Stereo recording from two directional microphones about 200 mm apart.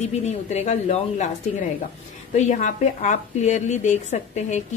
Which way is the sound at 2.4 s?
35° left (ahead or behind).